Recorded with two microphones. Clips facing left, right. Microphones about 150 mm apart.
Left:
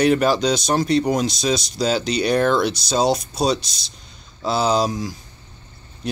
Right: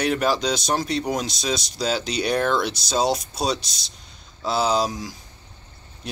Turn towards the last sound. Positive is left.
turn(degrees=0)  # may be behind; listen again after turning